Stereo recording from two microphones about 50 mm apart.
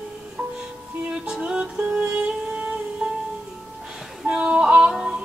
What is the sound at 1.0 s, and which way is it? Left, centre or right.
Music, right.